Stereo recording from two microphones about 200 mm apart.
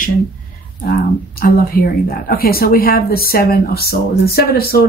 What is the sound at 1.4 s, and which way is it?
A woman's voice, 50° left (ahead or behind).